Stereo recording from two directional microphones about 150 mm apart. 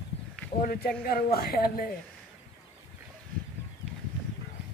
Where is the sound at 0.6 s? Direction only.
85° left.